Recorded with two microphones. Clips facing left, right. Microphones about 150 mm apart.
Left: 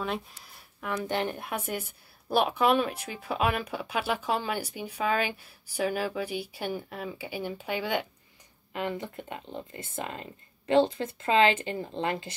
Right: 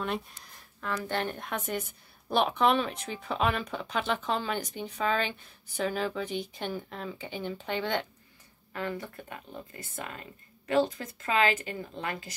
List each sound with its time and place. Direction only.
0.0 s speech: centre (ahead or behind)
8.7 s speech: 20° left (ahead or behind)